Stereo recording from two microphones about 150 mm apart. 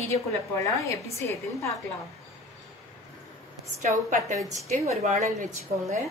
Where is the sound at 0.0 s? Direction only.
20° left (ahead or behind).